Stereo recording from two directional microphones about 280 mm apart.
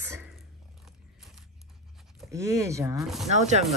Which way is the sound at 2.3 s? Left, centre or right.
Centre.